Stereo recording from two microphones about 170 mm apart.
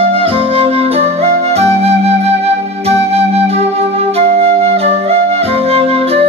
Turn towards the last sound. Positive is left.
turn(degrees=-35)  # may be behind; listen again after turning